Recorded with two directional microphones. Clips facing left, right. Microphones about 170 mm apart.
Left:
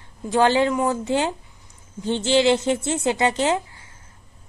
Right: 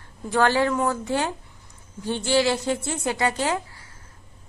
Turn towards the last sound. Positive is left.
turn(degrees=20)  # may be behind; listen again after turning